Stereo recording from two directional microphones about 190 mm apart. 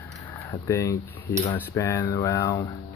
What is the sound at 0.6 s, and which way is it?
Speech, 15° left (ahead or behind).